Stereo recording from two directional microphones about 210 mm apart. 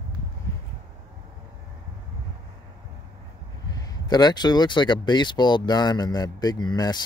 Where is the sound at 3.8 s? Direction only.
20° left (ahead or behind).